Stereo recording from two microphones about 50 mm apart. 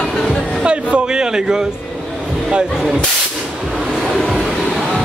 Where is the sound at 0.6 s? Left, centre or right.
Centre.